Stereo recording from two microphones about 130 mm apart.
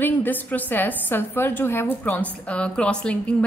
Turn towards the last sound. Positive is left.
turn(degrees=10)  # may be behind; listen again after turning